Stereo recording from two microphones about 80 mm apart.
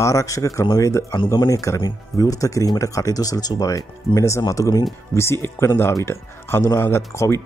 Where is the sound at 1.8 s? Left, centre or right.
Left.